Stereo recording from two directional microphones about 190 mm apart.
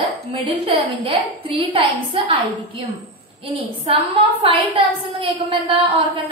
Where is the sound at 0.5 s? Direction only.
30° right (ahead or behind).